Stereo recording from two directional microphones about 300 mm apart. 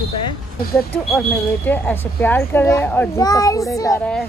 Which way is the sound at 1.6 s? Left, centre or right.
Centre.